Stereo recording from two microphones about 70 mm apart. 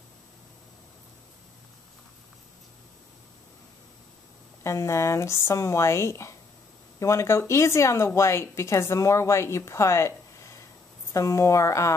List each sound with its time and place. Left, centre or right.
4.6 s speech: left